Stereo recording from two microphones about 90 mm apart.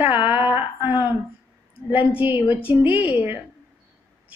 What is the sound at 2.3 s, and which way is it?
A woman's voice, 25° right (ahead or behind).